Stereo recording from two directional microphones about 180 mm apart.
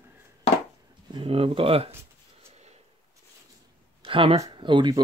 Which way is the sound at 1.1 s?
30° right (ahead or behind).